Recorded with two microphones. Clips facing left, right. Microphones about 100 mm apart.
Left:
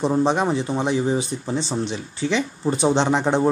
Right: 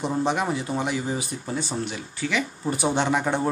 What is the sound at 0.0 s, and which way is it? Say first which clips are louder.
Speech: left 5 dB; 30° left (ahead or behind).